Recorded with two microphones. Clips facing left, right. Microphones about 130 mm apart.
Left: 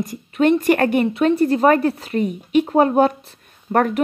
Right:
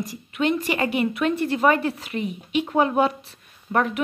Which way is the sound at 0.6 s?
50° left (ahead or behind).